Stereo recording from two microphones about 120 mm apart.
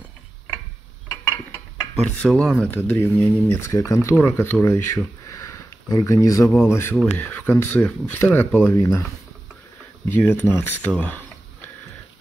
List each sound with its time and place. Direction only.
2.0 s speech: 10° left (ahead or behind)
2.7 s speech: 20° left (ahead or behind)
10.0 s speech: 15° left (ahead or behind)